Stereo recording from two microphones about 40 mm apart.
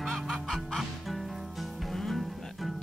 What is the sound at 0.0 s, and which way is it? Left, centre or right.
Music, centre.